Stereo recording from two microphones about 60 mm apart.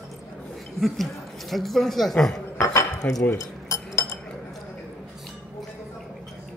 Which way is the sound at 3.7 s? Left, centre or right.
Left.